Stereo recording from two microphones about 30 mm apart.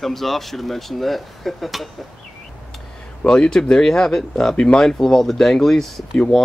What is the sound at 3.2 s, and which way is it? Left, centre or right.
Speech, left.